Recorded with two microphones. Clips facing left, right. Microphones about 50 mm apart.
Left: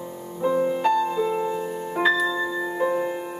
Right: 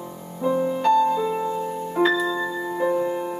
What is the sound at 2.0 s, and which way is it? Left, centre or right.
Music, centre.